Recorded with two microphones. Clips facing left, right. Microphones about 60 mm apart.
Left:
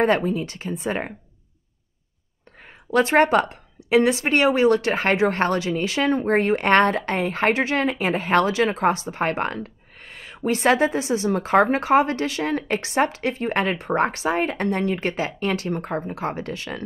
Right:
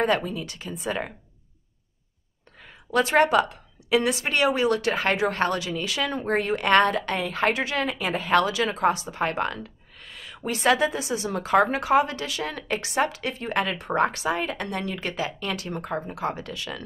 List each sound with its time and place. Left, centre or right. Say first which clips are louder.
0.0 s a woman's voice: left 4 dB; left
2.6 s a sound: left 3 dB; left
3.4 s a woman's voice: left 3 dB; left